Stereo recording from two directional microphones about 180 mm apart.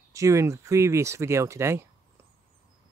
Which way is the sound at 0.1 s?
15° right (ahead or behind).